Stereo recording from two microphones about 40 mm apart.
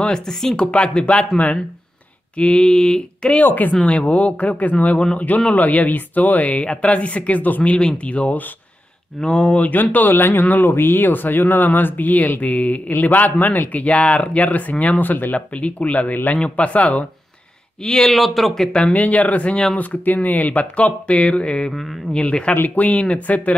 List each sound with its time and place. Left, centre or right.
0.0 s speech: centre
0.7 s speech: left
3.8 s speech: left
7.7 s speech: left
9.6 s speech: left
10.4 s speech: left
12.9 s a man's voice: left
15.3 s speech: left
17.8 s speech: centre
18.1 s a man's voice: centre
18.7 s speech: left
18.9 s speech: left